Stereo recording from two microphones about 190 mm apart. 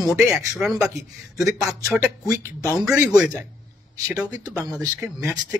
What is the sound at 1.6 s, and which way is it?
Speech, 15° right (ahead or behind).